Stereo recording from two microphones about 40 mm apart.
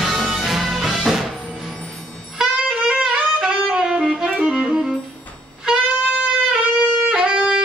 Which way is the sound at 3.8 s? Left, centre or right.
Centre.